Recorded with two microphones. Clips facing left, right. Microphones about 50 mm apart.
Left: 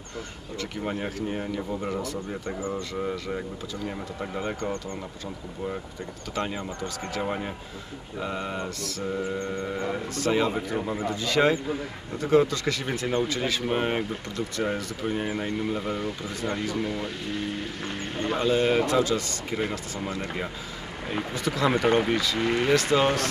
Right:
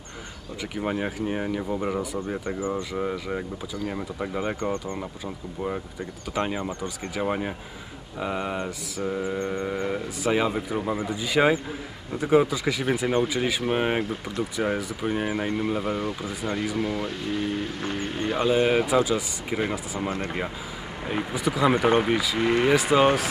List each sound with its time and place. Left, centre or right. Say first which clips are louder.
0.6 s speech: right 3 dB; centre
6.3 s speech: right 3 dB; centre
17.8 s speech: even; centre
21.1 s speech: right 2 dB; centre